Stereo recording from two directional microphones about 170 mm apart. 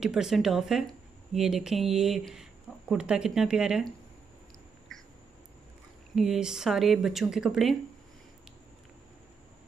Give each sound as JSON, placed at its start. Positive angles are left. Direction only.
{"t": 0.0, "sound": "speech", "side_deg": -5}
{"t": 6.1, "sound": "speech", "side_deg": 0}